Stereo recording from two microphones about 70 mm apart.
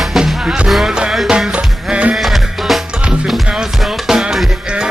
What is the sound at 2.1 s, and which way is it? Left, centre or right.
Music, centre.